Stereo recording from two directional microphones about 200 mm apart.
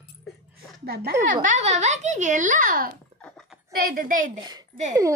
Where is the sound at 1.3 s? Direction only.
40° right (ahead or behind).